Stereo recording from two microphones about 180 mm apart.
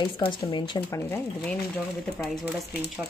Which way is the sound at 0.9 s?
10° left (ahead or behind).